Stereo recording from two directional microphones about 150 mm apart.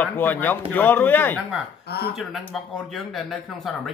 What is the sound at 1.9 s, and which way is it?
Speech, 90° left.